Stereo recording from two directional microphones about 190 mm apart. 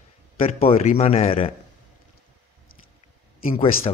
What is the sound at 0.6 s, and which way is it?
Speech, 30° left (ahead or behind).